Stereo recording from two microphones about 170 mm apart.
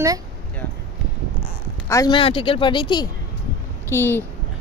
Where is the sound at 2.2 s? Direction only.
30° left (ahead or behind).